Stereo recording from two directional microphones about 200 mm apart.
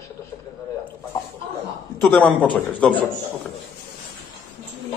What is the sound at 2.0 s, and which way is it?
Speech, 5° left (ahead or behind).